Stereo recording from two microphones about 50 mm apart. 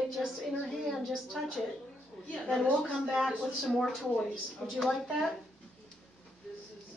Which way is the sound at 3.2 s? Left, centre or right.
Centre.